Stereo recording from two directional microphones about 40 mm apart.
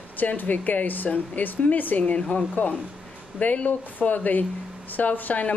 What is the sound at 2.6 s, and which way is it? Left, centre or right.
Speech, left.